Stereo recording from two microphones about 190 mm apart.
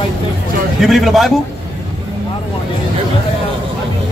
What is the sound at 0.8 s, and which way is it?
Speech, centre (ahead or behind).